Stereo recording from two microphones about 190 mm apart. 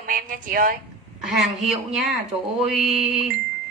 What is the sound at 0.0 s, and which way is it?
Speech, 45° right (ahead or behind).